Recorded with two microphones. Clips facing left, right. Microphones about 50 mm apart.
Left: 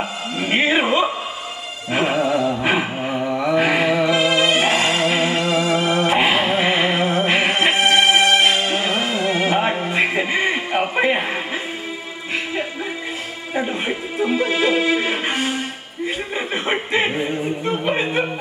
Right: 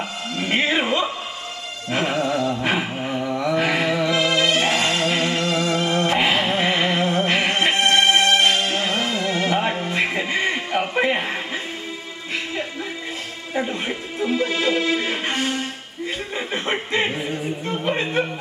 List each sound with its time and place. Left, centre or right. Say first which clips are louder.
0.4 s music: left 3 dB; centre
1.9 s a sound: left 3 dB; centre
13.6 s music: left 2 dB; centre